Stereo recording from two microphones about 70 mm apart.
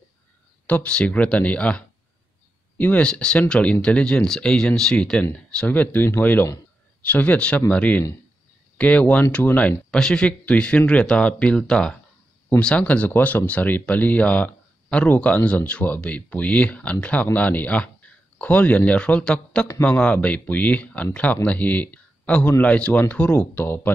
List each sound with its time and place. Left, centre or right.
0.7 s speech: centre
5.2 s speech: left
9.8 s speech: centre; by 23.9 s left